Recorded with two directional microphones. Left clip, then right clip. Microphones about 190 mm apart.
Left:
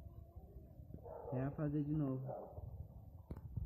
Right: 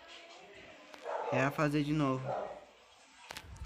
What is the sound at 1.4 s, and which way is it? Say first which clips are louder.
Speech: right 10 dB; 10° right (ahead or behind).